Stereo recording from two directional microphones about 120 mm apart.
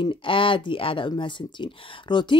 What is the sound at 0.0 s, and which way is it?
Speech, 45° left (ahead or behind).